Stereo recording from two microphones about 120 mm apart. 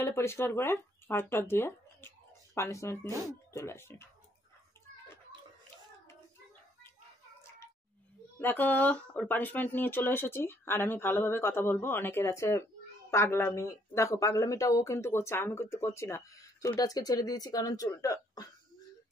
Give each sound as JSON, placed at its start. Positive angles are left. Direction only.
{"t": 0.0, "sound": "speech", "side_deg": 20}
{"t": 8.4, "sound": "speech", "side_deg": 15}